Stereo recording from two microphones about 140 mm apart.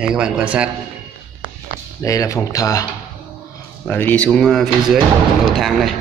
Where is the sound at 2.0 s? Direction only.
25° left (ahead or behind).